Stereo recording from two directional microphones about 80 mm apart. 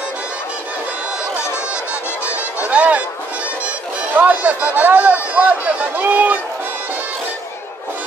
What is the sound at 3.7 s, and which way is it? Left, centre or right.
Speech, centre.